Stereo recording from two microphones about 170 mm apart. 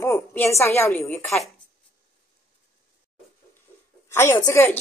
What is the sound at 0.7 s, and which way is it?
Speech, 15° left (ahead or behind).